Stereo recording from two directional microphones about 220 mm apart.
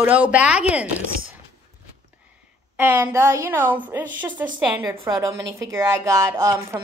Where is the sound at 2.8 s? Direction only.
10° right (ahead or behind).